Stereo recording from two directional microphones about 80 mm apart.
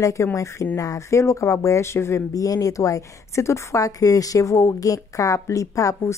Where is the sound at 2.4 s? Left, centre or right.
Left.